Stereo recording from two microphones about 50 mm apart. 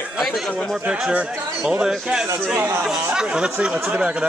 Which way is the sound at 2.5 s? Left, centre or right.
Right.